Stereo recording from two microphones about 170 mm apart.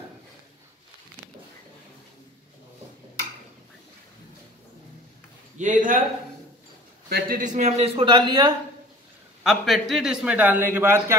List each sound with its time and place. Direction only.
5.6 s a man's voice: 50° right (ahead or behind)
7.1 s a man's voice: 60° right (ahead or behind); by 8.5 s 25° right (ahead or behind)
9.4 s a man's voice: centre (ahead or behind)